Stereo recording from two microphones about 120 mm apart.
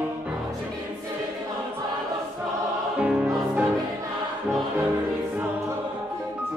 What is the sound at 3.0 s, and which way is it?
Music, 10° right (ahead or behind).